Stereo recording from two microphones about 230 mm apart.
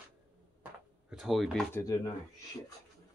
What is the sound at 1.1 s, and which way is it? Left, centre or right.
Speech, centre.